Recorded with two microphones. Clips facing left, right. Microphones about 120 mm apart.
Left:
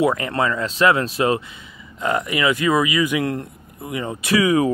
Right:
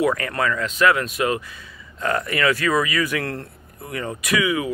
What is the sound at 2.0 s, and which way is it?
Speech, 15° left (ahead or behind).